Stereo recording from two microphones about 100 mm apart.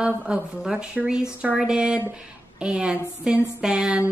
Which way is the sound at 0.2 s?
5° right (ahead or behind).